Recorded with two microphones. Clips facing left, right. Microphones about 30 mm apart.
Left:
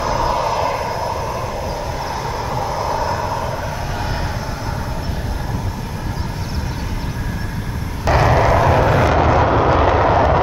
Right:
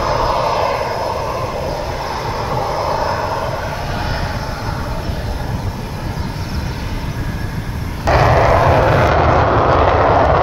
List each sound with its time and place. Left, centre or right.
0.0 s vehicle: right
8.0 s vehicle: centre